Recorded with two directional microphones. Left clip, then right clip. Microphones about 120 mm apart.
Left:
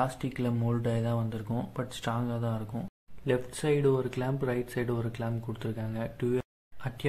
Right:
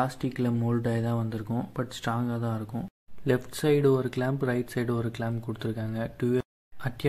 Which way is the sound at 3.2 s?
40° right (ahead or behind).